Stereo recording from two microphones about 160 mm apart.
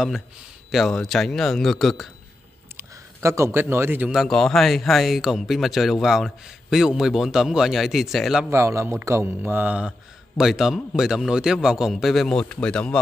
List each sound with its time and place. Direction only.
0.7 s a man's voice: centre (ahead or behind)
2.8 s a man's voice: 20° right (ahead or behind); by 8.5 s centre (ahead or behind)
8.5 s a man's voice: 15° right (ahead or behind); by 13.0 s 5° left (ahead or behind)